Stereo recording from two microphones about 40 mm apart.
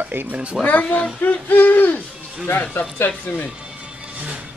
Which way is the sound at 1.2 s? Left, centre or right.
Left.